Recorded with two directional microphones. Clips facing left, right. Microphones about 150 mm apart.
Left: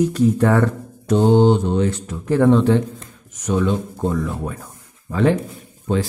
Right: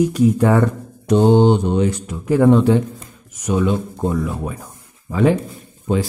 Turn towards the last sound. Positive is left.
turn(degrees=-10)  # may be behind; listen again after turning